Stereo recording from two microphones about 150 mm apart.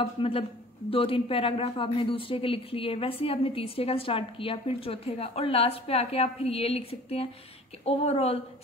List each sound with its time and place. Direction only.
0.0 s a man's voice: 35° left (ahead or behind)